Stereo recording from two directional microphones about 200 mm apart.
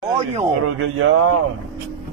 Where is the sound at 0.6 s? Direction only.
90° right.